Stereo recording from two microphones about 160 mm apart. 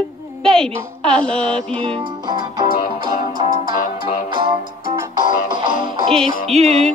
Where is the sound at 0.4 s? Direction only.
5° left (ahead or behind).